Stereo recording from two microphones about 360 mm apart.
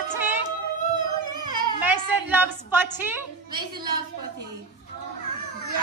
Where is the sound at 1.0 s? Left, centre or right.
Right.